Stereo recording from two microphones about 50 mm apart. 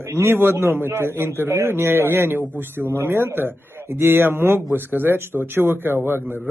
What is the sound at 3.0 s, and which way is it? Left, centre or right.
A man's voice, right.